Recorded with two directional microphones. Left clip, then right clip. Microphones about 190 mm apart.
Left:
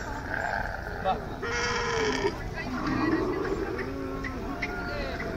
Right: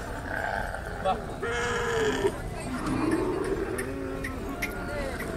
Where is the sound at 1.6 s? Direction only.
55° right (ahead or behind).